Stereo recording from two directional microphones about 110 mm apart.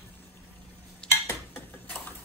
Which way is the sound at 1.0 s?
10° left (ahead or behind).